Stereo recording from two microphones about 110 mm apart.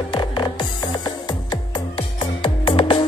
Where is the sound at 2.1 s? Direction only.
50° left (ahead or behind).